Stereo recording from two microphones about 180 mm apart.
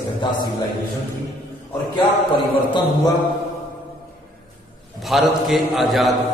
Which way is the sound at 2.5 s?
25° left (ahead or behind).